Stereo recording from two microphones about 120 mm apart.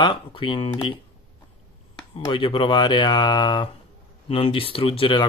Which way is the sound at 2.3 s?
45° left (ahead or behind).